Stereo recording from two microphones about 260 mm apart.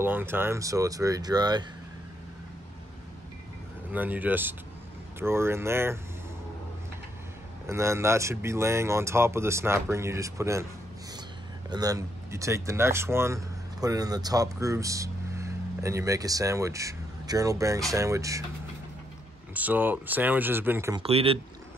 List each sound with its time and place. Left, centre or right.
0.0 s speech: centre
3.9 s speech: centre
7.6 s speech: centre
11.7 s speech: centre
19.5 s speech: centre
21.0 s speech: right